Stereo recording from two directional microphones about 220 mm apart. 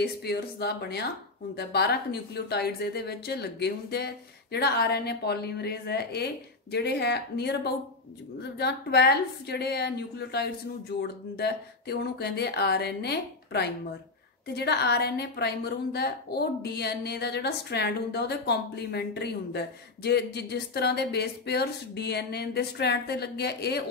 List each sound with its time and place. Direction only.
0.0 s a woman's voice: 45° left (ahead or behind)